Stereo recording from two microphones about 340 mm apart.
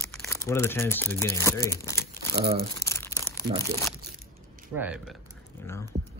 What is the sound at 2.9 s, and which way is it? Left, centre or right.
Crumpling, centre.